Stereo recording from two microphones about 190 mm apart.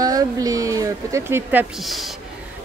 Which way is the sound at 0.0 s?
20° right (ahead or behind).